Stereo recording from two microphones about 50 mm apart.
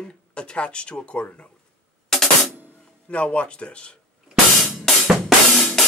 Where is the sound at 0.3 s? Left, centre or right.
Left.